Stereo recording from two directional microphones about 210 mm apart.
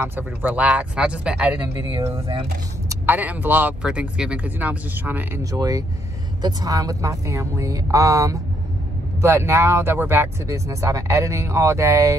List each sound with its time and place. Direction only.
0.0 s speech: 10° right (ahead or behind)
1.9 s speech: 15° right (ahead or behind)